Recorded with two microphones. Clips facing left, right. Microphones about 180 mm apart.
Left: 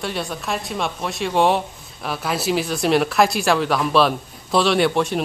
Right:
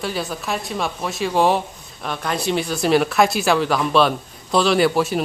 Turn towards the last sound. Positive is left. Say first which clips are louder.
# right 1 dB
turn(degrees=0)  # may be behind; listen again after turning